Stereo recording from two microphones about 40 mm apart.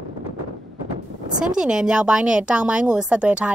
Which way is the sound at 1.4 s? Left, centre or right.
Centre.